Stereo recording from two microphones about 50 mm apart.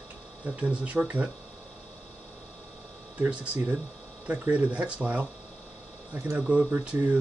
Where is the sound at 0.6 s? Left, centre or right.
Right.